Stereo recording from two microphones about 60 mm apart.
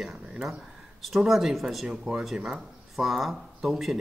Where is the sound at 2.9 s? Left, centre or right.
Centre.